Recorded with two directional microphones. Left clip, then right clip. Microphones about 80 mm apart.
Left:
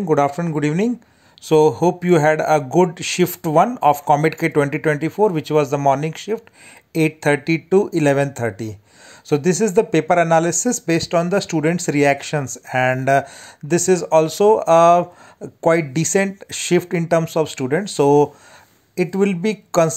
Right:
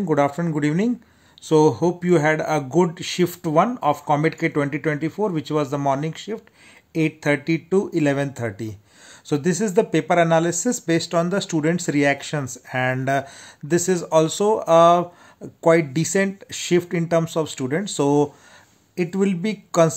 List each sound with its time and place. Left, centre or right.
0.1 s speech: left
1.4 s speech: left